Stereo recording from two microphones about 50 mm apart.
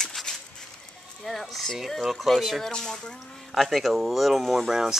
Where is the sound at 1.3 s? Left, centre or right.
Centre.